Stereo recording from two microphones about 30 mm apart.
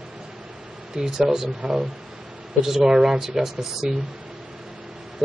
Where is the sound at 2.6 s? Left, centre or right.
Centre.